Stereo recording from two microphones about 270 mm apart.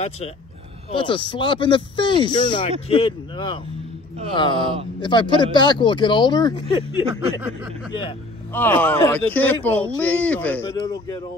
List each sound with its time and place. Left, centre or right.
0.9 s speech: centre
8.5 s speech: centre